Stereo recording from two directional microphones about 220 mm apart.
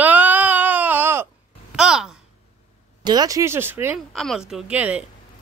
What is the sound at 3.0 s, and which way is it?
Speech, 15° right (ahead or behind).